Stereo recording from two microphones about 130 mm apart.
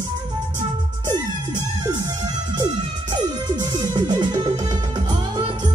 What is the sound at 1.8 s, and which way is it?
Music, 30° right (ahead or behind).